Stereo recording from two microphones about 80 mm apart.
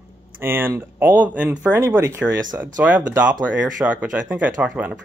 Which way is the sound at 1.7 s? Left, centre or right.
Right.